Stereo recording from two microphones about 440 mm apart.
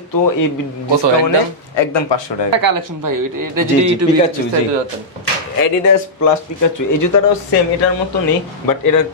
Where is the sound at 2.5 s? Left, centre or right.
Right.